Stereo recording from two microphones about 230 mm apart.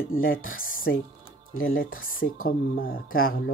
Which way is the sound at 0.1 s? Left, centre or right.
Left.